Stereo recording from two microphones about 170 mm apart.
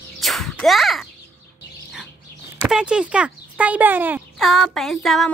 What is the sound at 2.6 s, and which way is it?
Speech, 5° right (ahead or behind).